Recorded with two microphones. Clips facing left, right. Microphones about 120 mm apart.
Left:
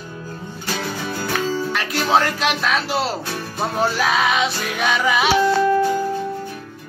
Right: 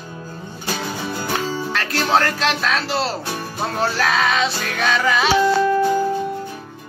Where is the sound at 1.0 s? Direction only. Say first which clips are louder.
Even; 25° right (ahead or behind).